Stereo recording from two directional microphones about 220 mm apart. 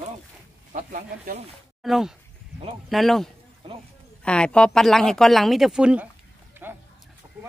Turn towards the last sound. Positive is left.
turn(degrees=-10)  # may be behind; listen again after turning